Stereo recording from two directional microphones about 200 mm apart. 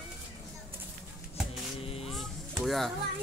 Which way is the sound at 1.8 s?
30° left (ahead or behind).